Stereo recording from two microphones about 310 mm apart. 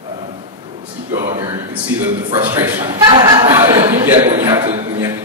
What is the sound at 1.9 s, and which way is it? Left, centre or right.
A man's voice, centre.